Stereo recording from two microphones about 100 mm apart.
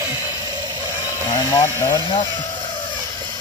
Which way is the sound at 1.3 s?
40° left (ahead or behind).